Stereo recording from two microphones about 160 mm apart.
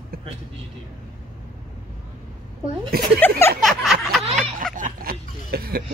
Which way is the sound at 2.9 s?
70° right (ahead or behind).